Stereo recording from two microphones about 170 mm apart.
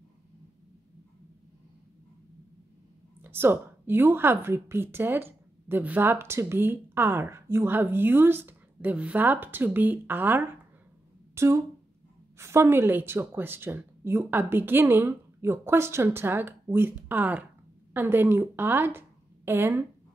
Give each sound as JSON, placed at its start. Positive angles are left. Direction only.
{"t": 3.2, "sound": "a woman's voice", "side_deg": -15}